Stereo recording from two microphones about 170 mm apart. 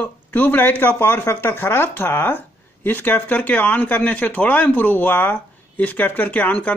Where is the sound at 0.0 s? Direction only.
10° left (ahead or behind).